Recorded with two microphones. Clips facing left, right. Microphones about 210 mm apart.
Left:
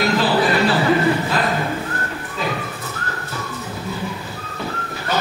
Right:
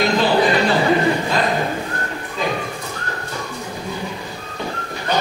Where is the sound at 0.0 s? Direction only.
20° right (ahead or behind).